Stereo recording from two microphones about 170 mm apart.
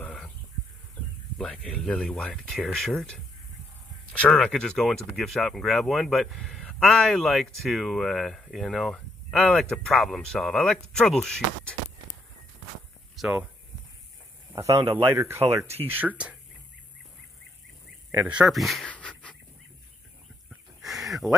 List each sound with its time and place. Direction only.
0.0 s a sound: 5° left (ahead or behind)
1.4 s speech: 5° left (ahead or behind)
13.1 s speech: 5° right (ahead or behind)
14.5 s a man's voice: 15° right (ahead or behind)
18.1 s speech: 10° right (ahead or behind); by 19.3 s 5° left (ahead or behind)
20.8 s a sound: centre (ahead or behind)